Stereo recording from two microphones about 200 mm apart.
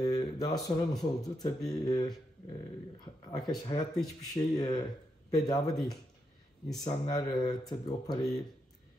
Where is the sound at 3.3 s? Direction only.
20° left (ahead or behind).